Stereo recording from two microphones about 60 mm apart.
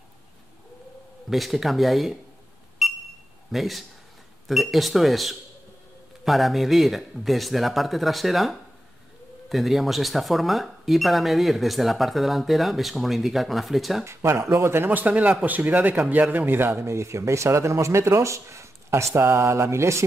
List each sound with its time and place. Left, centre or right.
1.3 s speech: centre
2.8 s a sound: centre
3.5 s speech: centre
14.0 s speech: right